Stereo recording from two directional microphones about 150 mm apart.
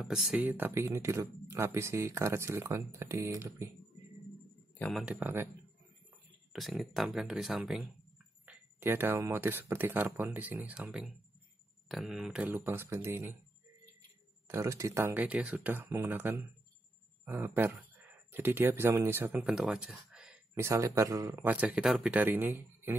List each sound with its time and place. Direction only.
0.0 s speech: 5° right (ahead or behind)
5.0 s speech: 15° right (ahead or behind)
6.8 s speech: centre (ahead or behind); by 13.4 s 15° right (ahead or behind)
14.5 s speech: 20° right (ahead or behind)
20.5 s speech: 20° right (ahead or behind)